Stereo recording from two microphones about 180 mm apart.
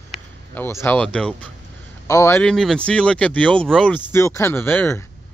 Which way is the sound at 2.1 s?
15° left (ahead or behind).